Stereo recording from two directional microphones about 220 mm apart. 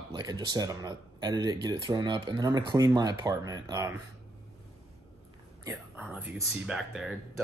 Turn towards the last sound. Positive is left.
turn(degrees=0)  # may be behind; listen again after turning